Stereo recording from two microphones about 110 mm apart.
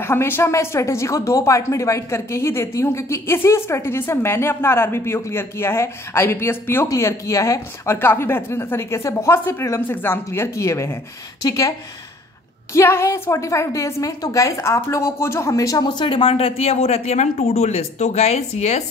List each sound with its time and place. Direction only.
0.0 s a woman's voice: 20° left (ahead or behind)
12.7 s a woman's voice: 25° left (ahead or behind); by 18.9 s 80° left